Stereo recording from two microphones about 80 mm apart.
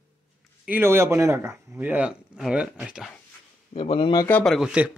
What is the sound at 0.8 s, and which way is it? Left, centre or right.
Speech, right.